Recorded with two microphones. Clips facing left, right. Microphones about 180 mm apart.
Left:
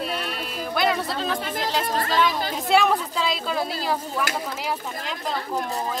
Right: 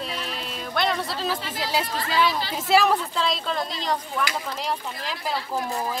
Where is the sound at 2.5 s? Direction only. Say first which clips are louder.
Even; centre (ahead or behind).